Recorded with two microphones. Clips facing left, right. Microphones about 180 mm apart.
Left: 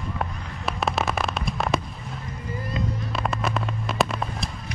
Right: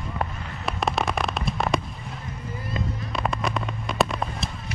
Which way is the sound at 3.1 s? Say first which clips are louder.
Right 1 dB; centre (ahead or behind).